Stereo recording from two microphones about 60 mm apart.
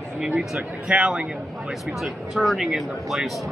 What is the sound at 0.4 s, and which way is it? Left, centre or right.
Speech, centre.